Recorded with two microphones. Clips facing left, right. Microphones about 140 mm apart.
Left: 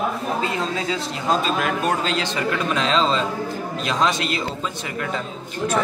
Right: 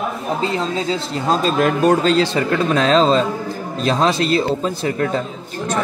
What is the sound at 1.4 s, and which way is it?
A man's voice, 40° right (ahead or behind).